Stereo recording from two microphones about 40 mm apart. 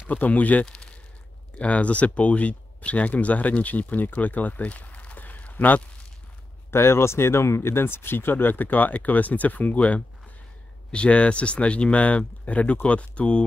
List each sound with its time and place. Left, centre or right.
0.1 s speech: left
6.7 s speech: left